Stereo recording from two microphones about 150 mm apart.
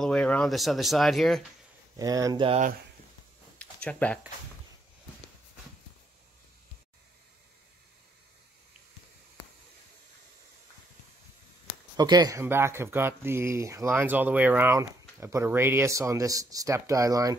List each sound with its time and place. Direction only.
0.0 s speech: 5° left (ahead or behind)
2.0 s speech: 25° right (ahead or behind)
3.5 s a sound: 10° left (ahead or behind)
12.0 s speech: 25° right (ahead or behind)